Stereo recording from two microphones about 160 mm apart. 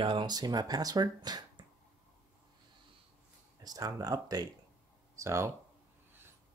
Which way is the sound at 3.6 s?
25° right (ahead or behind).